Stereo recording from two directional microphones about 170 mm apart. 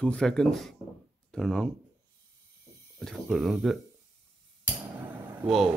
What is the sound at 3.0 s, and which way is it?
Speech, centre (ahead or behind).